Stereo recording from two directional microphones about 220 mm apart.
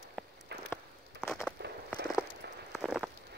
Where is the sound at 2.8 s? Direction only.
Centre (ahead or behind).